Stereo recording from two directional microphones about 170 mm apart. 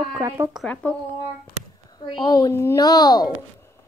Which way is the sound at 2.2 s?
25° left (ahead or behind).